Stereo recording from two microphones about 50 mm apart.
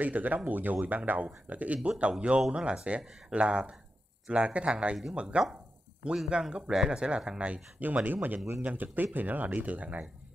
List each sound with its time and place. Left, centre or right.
0.0 s speech: right
3.0 s speech: centre
3.3 s speech: right
6.1 s speech: centre; by 10.0 s right